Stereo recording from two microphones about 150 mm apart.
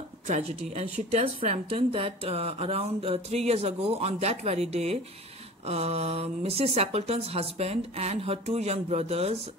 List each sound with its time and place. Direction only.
0.3 s a woman's voice: 45° right (ahead or behind)